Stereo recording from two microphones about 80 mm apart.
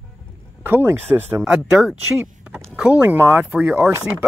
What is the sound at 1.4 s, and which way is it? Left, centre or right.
Speech, centre.